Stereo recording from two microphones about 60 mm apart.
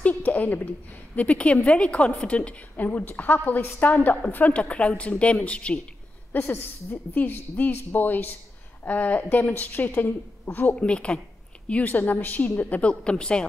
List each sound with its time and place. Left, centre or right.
0.0 s a sound: left
1.1 s a woman's voice: left
6.3 s a woman's voice: left
10.8 s a woman's voice: centre
13.0 s speech: centre